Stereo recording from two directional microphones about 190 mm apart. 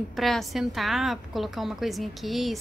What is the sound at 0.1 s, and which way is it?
A woman's voice, centre (ahead or behind).